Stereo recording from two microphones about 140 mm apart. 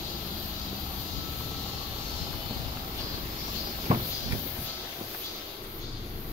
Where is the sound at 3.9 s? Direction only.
55° right (ahead or behind).